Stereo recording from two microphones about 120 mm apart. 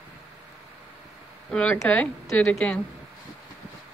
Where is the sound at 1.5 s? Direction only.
10° left (ahead or behind).